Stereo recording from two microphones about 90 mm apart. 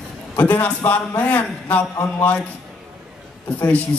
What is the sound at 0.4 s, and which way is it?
A man's voice, 20° left (ahead or behind).